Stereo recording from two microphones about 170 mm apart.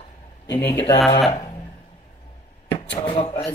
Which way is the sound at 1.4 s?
20° left (ahead or behind).